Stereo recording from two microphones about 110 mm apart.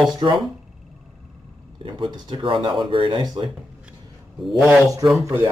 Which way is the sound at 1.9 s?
45° right (ahead or behind).